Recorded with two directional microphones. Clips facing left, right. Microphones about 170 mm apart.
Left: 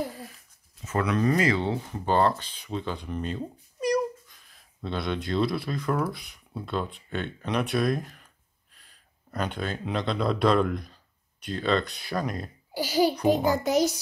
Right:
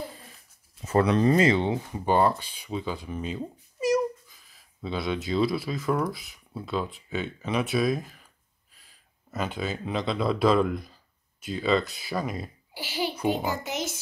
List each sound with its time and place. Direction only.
0.8 s speech: 30° right (ahead or behind); by 12.4 s 5° right (ahead or behind)
12.7 s a sound: 40° left (ahead or behind)
13.7 s music: 35° left (ahead or behind)